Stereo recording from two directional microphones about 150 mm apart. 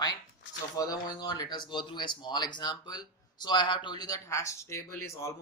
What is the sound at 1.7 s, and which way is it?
Speech, 30° left (ahead or behind).